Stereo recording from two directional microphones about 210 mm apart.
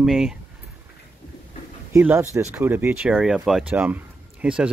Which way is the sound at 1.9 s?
10° right (ahead or behind).